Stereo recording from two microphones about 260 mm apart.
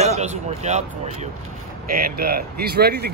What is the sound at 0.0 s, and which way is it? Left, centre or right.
Speech, right.